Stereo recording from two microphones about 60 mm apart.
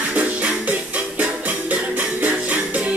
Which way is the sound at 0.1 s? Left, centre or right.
Right.